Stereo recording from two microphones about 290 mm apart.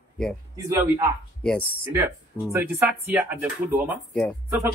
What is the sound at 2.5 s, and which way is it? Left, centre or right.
Speech, centre.